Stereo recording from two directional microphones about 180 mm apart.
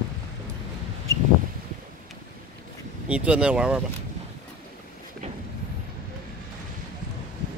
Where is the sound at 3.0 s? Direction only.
5° right (ahead or behind).